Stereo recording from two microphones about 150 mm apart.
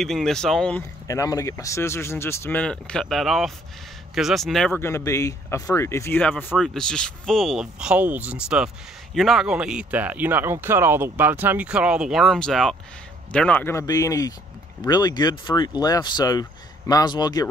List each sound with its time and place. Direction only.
0.0 s speech: 5° left (ahead or behind)
1.0 s speech: 20° left (ahead or behind); by 4.7 s centre (ahead or behind)
4.7 s speech: 15° left (ahead or behind)
6.3 s speech: centre (ahead or behind); by 17.5 s 25° left (ahead or behind)